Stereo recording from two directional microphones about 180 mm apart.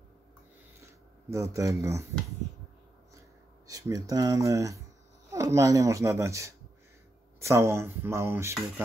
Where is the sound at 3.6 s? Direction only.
20° right (ahead or behind).